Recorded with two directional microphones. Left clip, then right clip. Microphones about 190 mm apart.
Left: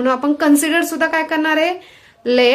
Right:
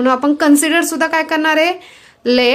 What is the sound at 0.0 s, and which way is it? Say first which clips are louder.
A woman's voice: right 3 dB; 25° right (ahead or behind).